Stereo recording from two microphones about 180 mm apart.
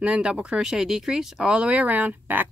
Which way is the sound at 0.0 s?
5° right (ahead or behind).